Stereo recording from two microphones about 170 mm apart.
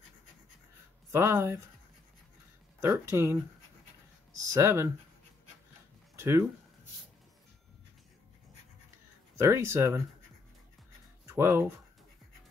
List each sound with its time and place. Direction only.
1.1 s speech: 15° right (ahead or behind)
2.8 s speech: 15° right (ahead or behind)
6.1 s speech: 15° right (ahead or behind)
9.4 s speech: 15° right (ahead or behind)
11.2 s speech: 15° right (ahead or behind)